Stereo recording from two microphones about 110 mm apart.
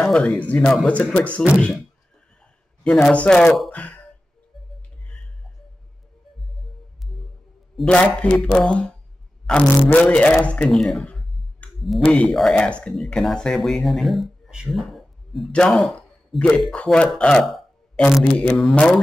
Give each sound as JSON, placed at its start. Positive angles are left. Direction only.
{"t": 0.0, "sound": "a man's voice", "side_deg": 5}
{"t": 2.8, "sound": "a man's voice", "side_deg": 10}
{"t": 3.7, "sound": "a sound", "side_deg": 15}
{"t": 7.7, "sound": "a man's voice", "side_deg": 10}